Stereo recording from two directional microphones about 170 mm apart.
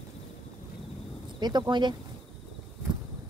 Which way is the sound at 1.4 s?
25° right (ahead or behind).